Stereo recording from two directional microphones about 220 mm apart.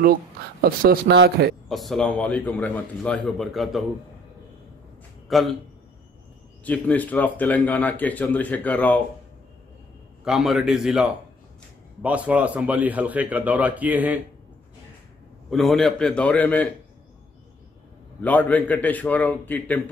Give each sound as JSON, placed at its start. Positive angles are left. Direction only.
{"t": 0.0, "sound": "speech", "side_deg": -40}
{"t": 1.7, "sound": "a man's voice", "side_deg": 0}
{"t": 5.3, "sound": "a man's voice", "side_deg": 0}
{"t": 6.6, "sound": "speech", "side_deg": 5}
{"t": 10.2, "sound": "a man's voice", "side_deg": 0}
{"t": 15.5, "sound": "a man's voice", "side_deg": 0}
{"t": 18.2, "sound": "speech", "side_deg": 5}